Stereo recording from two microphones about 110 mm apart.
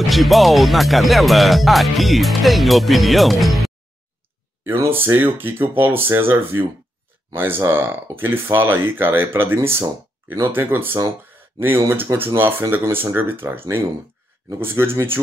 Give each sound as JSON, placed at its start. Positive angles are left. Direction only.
{"t": 0.1, "sound": "speech", "side_deg": 0}
{"t": 4.6, "sound": "speech", "side_deg": -20}